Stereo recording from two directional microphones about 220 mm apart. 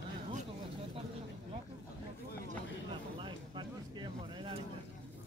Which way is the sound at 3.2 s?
20° right (ahead or behind).